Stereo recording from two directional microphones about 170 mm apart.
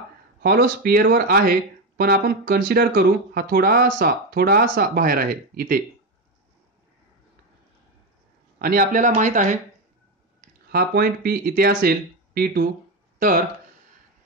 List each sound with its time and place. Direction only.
0.4 s speech: 65° right (ahead or behind)
8.5 s speech: 60° right (ahead or behind)
10.4 s speech: 65° right (ahead or behind)